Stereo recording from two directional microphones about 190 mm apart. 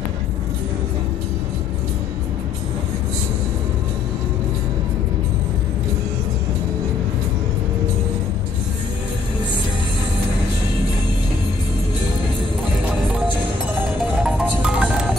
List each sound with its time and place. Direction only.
14.2 s music: 5° right (ahead or behind)